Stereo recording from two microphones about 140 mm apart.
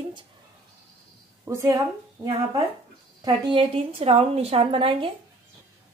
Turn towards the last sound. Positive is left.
turn(degrees=-40)  # may be behind; listen again after turning